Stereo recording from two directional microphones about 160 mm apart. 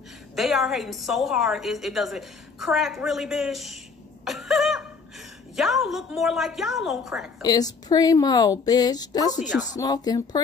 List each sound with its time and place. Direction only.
0.4 s a woman's voice: centre (ahead or behind)
4.2 s a sound: centre (ahead or behind)
5.6 s a woman's voice: centre (ahead or behind)
7.4 s a woman's voice: 25° left (ahead or behind)